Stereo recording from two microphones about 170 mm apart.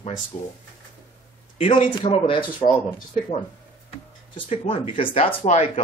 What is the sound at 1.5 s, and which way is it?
Speech, 30° left (ahead or behind).